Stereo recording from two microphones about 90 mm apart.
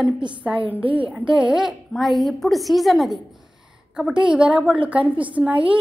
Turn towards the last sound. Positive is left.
turn(degrees=-15)  # may be behind; listen again after turning